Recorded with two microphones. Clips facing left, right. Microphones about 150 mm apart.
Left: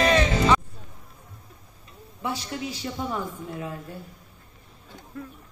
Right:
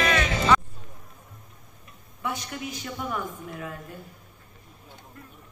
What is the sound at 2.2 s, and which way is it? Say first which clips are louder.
A woman's voice: left 2 dB; 30° left (ahead or behind).